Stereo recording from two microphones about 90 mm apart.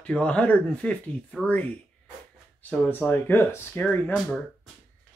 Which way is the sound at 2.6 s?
20° left (ahead or behind).